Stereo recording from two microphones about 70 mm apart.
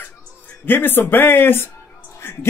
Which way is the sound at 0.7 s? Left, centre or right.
Left.